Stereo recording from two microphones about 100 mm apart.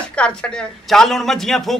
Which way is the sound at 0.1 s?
10° left (ahead or behind).